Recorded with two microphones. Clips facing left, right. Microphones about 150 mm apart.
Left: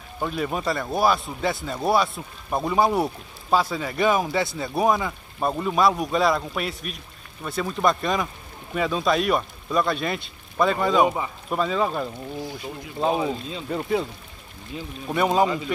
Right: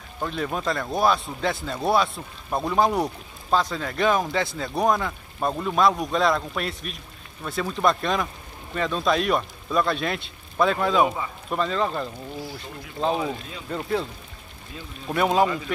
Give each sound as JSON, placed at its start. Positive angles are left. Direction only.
{"t": 0.2, "sound": "speech", "side_deg": 5}
{"t": 13.7, "sound": "speech", "side_deg": 5}
{"t": 15.0, "sound": "speech", "side_deg": 0}